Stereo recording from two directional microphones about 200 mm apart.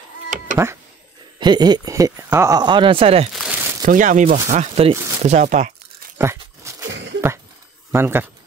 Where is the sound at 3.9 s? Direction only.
40° right (ahead or behind).